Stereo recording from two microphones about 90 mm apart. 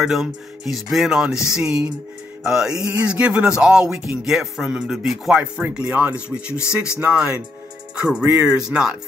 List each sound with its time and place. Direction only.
0.0 s speech: 5° right (ahead or behind)
5.4 s speech: 15° right (ahead or behind)
8.2 s speech: 20° right (ahead or behind)
8.5 s speech: 10° right (ahead or behind)